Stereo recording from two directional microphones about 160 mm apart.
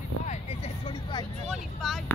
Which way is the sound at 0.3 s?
40° left (ahead or behind).